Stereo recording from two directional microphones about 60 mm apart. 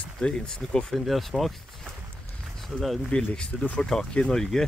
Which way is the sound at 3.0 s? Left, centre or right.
Centre.